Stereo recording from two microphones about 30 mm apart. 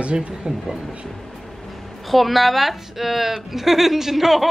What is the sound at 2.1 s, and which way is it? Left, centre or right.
A woman's voice, centre.